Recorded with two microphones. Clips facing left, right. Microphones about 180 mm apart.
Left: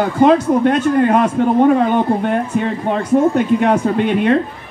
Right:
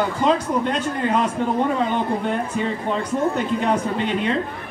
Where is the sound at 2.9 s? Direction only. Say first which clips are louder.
Left 10 dB; 60° left (ahead or behind).